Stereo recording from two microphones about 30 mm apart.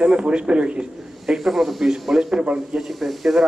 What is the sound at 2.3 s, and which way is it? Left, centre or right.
Speech, right.